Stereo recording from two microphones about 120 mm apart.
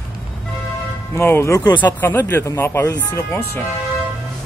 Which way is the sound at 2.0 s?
15° left (ahead or behind).